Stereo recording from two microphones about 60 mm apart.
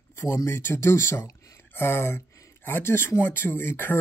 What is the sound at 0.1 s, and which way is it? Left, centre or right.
Speech, left.